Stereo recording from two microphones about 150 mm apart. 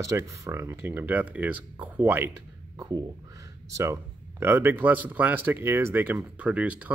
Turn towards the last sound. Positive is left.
turn(degrees=-10)  # may be behind; listen again after turning